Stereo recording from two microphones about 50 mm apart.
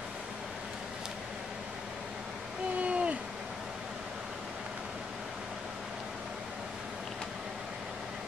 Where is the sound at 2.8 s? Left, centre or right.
Right.